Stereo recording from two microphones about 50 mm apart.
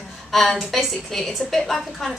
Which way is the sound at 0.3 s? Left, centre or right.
Centre.